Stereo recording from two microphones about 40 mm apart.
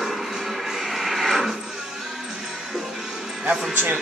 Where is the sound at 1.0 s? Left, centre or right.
Centre.